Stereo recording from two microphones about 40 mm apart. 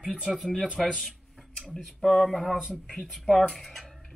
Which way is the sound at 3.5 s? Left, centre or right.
Centre.